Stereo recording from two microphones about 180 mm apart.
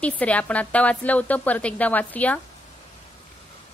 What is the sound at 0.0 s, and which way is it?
A woman's voice, 10° left (ahead or behind).